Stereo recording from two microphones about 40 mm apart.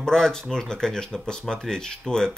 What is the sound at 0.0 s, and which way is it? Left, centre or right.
Speech, centre.